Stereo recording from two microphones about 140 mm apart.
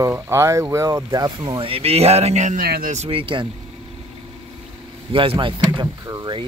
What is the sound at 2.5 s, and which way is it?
Speech, 90° right.